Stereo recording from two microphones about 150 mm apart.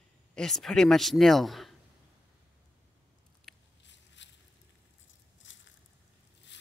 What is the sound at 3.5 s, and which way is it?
Biting, 5° left (ahead or behind).